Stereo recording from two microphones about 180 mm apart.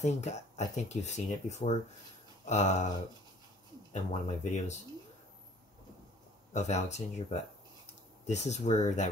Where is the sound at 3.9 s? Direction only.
40° left (ahead or behind).